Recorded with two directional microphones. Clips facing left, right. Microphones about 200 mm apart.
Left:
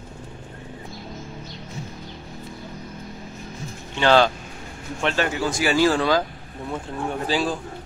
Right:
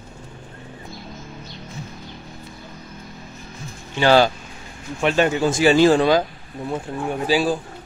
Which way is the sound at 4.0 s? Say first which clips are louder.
Right 2 dB; 10° right (ahead or behind).